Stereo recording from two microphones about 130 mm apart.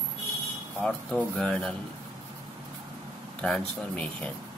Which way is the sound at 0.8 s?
5° left (ahead or behind).